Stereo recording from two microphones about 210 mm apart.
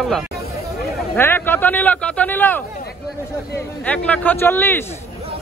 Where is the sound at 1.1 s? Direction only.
10° left (ahead or behind).